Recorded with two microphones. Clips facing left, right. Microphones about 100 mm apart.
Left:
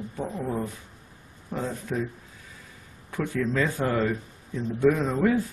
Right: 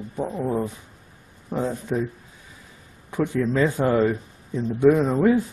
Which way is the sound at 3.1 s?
20° right (ahead or behind).